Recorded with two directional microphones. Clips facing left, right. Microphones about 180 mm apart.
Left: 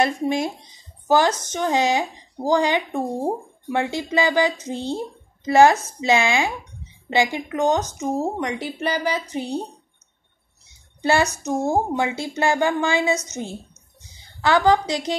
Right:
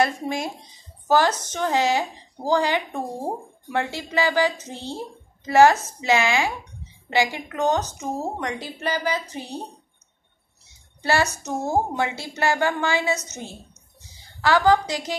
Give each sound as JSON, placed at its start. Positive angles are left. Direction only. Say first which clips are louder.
{"t": 0.0, "sound": "a woman's voice", "louder": "left 3 dB", "side_deg": 20}
{"t": 11.0, "sound": "a woman's voice", "louder": "left 3 dB", "side_deg": 20}
{"t": 14.4, "sound": "a woman's voice", "louder": "left 1 dB", "side_deg": 20}